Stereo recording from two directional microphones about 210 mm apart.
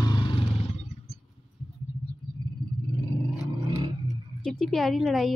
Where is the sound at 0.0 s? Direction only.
20° left (ahead or behind).